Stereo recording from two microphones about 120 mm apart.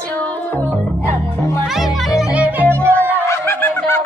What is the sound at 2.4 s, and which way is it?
Music, 15° right (ahead or behind).